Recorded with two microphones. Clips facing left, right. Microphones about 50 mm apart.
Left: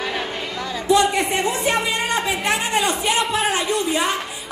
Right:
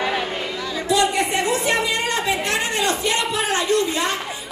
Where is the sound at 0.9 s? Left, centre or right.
Left.